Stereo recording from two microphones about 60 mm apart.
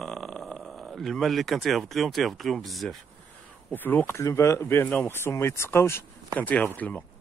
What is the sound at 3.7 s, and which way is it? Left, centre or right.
Speech, left.